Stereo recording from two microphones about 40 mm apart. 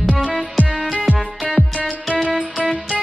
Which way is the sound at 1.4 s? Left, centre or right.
Centre.